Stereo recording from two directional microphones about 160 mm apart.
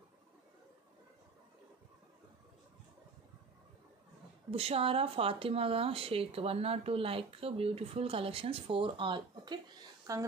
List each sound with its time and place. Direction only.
4.5 s speech: 40° right (ahead or behind)